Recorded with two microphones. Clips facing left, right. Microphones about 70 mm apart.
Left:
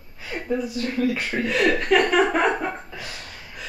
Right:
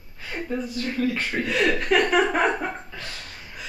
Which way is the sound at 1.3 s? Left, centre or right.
Centre.